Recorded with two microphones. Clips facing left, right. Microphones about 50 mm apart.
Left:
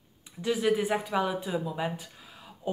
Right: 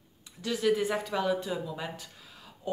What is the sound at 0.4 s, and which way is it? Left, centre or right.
Speech, centre.